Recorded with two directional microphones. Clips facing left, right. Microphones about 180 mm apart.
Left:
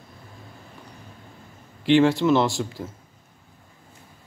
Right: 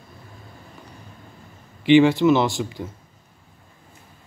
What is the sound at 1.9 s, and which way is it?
A man's voice, centre (ahead or behind).